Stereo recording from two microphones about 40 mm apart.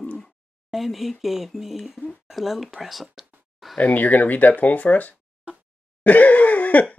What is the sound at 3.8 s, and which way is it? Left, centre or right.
Speech, left.